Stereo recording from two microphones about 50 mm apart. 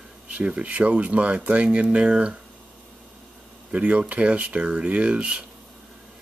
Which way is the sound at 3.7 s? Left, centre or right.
Right.